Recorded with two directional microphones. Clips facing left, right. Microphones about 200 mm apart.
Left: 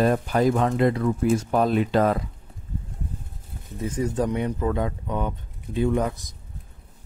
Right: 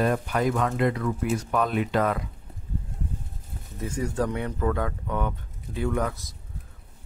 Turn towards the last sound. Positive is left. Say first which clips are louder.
# left 4 dB
turn(degrees=20)  # may be behind; listen again after turning